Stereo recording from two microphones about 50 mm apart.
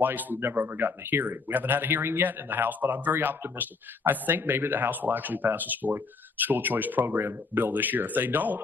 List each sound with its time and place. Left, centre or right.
0.0 s speech: right